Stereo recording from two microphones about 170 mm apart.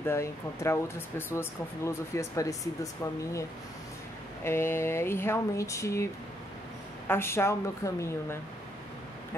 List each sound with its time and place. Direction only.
0.0 s speech: 15° left (ahead or behind)
7.1 s speech: 15° left (ahead or behind)